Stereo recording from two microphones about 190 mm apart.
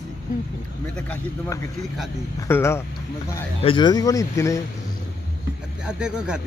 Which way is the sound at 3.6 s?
25° left (ahead or behind).